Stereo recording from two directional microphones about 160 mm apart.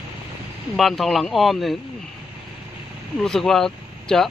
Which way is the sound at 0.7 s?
Centre (ahead or behind).